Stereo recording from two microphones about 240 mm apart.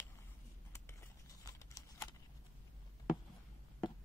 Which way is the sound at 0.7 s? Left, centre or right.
Centre.